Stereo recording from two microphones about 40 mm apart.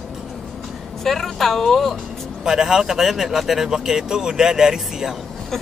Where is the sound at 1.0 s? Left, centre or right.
Centre.